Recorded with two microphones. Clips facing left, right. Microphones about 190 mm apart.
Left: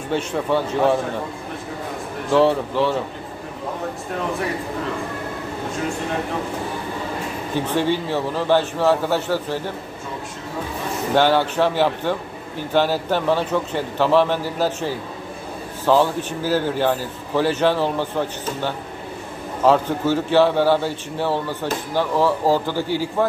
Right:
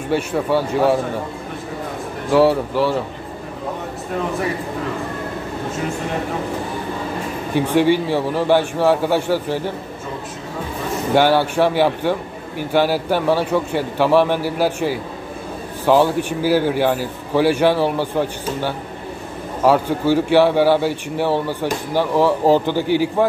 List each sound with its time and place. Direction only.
0.1 s a man's voice: 10° right (ahead or behind)
2.3 s a man's voice: 10° right (ahead or behind)
7.5 s a man's voice: 15° right (ahead or behind)
11.1 s a man's voice: 10° right (ahead or behind)